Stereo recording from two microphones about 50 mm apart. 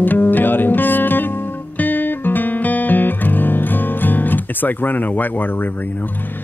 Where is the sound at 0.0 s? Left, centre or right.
Left.